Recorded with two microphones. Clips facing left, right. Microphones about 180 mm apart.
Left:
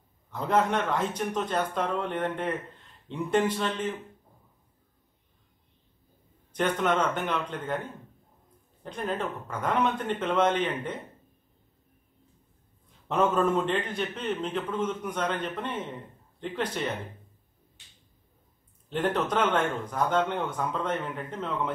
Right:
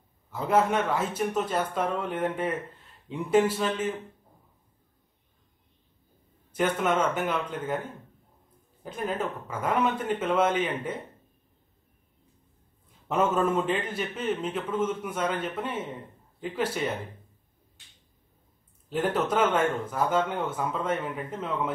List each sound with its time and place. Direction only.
0.3 s speech: 5° right (ahead or behind)
6.5 s speech: 5° right (ahead or behind)
8.8 s speech: 5° right (ahead or behind)
13.1 s speech: 5° right (ahead or behind)
18.9 s speech: 5° right (ahead or behind)